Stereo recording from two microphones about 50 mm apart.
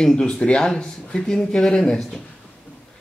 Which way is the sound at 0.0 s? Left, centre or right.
Centre.